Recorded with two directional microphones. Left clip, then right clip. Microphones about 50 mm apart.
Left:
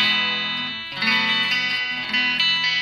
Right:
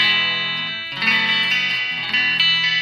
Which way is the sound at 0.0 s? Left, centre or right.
Right.